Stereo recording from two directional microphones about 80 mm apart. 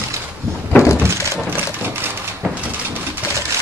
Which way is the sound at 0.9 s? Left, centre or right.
Right.